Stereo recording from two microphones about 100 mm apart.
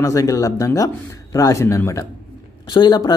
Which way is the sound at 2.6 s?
45° left (ahead or behind).